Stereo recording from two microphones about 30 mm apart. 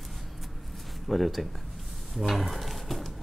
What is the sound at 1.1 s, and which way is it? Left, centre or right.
Speech, centre.